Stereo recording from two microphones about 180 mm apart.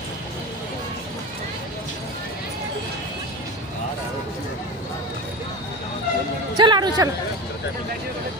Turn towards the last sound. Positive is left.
turn(degrees=-25)  # may be behind; listen again after turning